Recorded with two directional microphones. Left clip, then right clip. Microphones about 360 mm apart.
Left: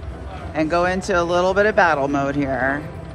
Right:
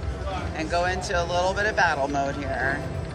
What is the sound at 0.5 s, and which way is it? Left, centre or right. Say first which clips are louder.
Speech: left 7 dB; centre.